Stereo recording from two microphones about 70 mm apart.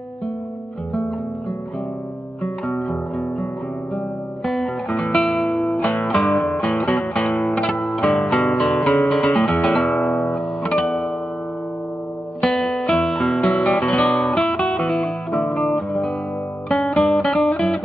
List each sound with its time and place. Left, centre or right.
2.4 s music: centre
4.8 s music: centre
5.7 s music: centre
6.0 s music: centre
8.3 s guitar: centre
8.9 s music: centre
12.4 s music: centre
13.7 s guitar: centre
14.0 s guitar: centre
14.5 s music: centre